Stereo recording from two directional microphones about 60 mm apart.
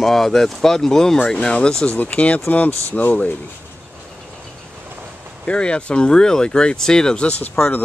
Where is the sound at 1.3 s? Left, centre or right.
Centre.